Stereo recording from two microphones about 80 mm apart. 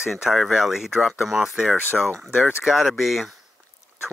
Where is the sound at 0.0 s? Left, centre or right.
Centre.